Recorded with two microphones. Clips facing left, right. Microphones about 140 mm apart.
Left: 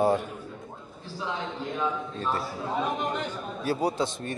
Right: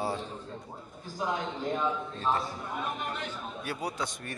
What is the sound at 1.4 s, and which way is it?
Speech, 40° right (ahead or behind).